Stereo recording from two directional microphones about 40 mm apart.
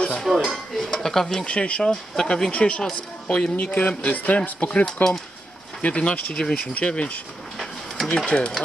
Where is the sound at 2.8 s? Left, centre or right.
Centre.